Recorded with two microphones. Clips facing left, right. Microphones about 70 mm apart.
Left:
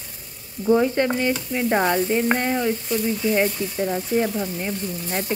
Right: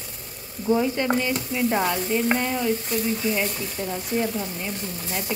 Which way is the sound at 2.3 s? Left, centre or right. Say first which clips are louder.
Left 2 dB; left.